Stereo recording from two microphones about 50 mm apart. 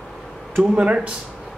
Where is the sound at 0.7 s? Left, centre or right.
Right.